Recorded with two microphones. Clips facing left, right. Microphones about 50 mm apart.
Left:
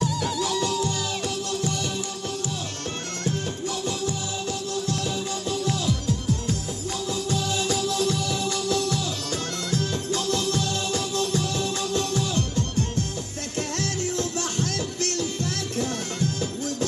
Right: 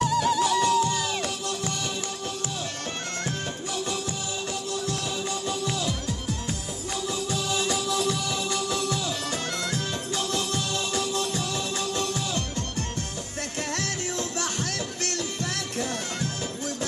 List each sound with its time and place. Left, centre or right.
5.7 s music: centre; by 15.5 s right